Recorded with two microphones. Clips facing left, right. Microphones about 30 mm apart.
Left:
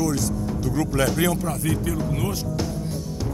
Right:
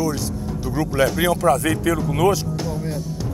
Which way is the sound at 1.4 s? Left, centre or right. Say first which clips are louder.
Right 8 dB; right.